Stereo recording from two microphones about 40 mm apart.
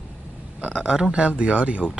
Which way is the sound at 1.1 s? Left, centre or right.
Right.